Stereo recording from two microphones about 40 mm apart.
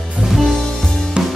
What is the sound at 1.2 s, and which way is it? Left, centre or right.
Drum kit, right.